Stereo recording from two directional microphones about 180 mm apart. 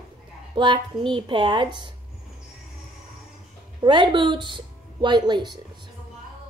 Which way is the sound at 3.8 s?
25° right (ahead or behind).